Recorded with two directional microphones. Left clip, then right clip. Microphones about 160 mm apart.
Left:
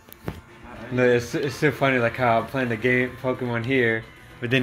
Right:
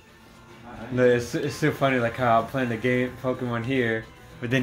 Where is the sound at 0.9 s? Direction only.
15° left (ahead or behind).